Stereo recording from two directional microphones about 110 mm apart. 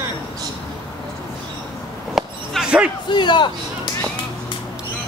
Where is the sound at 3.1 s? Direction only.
45° left (ahead or behind).